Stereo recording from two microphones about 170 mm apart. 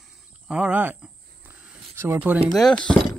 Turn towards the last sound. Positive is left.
turn(degrees=5)  # may be behind; listen again after turning